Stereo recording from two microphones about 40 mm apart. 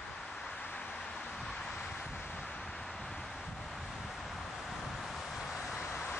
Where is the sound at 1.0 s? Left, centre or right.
Centre.